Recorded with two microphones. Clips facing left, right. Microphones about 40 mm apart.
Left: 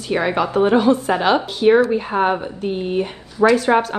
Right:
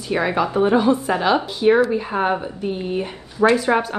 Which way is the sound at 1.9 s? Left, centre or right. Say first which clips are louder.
Left 2 dB; centre.